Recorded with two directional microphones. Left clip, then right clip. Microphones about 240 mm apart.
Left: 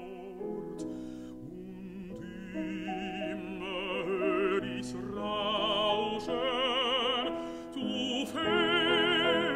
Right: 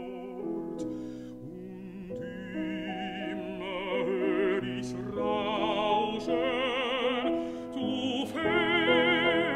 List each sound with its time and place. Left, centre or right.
2.5 s music: left